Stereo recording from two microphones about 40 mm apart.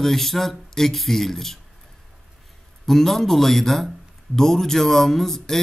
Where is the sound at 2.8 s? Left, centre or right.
Centre.